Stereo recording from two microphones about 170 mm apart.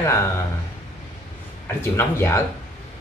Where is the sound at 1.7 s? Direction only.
15° left (ahead or behind).